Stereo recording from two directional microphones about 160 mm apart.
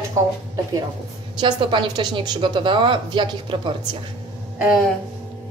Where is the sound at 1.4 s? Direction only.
30° right (ahead or behind).